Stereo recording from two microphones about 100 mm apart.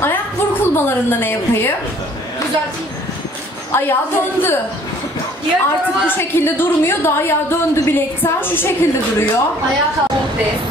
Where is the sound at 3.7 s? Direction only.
20° left (ahead or behind).